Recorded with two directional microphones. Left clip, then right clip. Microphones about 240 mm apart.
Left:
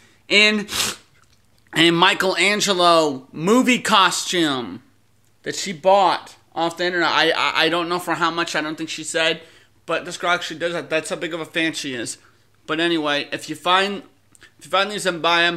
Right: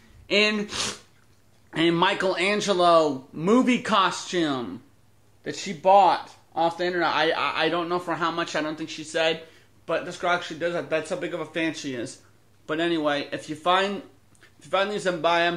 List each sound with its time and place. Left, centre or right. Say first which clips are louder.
0.3 s speech: left 6 dB; left